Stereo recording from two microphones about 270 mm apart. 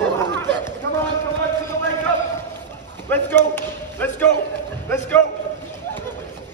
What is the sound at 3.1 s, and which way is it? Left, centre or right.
Basketball bounce, centre.